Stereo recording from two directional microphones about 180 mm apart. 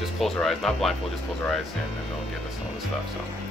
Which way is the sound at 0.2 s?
Centre (ahead or behind).